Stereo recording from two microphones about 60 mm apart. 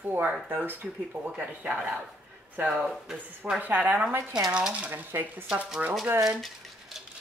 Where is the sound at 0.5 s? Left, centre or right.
Right.